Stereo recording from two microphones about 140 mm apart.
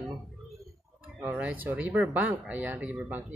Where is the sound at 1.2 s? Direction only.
15° right (ahead or behind).